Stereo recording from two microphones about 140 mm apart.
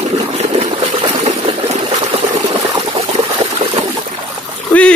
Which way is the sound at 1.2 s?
55° right (ahead or behind).